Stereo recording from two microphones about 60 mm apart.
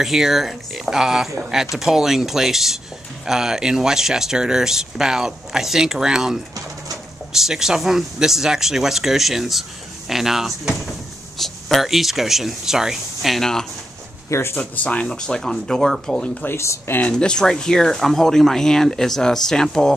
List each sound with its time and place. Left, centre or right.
0.0 s speech: centre
13.4 s speech: centre
14.3 s speech: left
14.6 s speech: left
15.0 s speech: centre
16.4 s speech: left
17.1 s speech: centre